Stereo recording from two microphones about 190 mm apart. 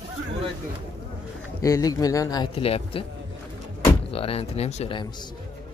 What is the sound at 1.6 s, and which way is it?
A man's voice, 20° left (ahead or behind).